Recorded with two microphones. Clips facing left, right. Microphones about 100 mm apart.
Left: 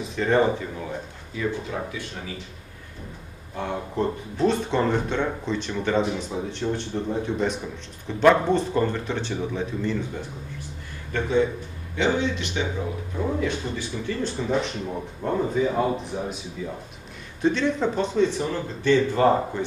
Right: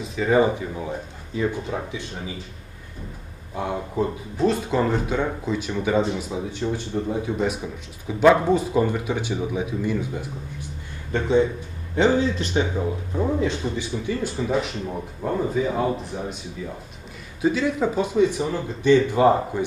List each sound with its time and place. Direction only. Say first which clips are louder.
0.0 s speech: right 2 dB; centre (ahead or behind); by 2.3 s 20° right (ahead or behind)
3.5 s speech: right 2 dB; 10° right (ahead or behind)
11.1 s speech: right 3 dB; 25° right (ahead or behind)
11.9 s speech: right 4 dB; 40° right (ahead or behind)
13.4 s speech: right 2 dB; 20° right (ahead or behind)
14.3 s speech: right 1 dB; centre (ahead or behind)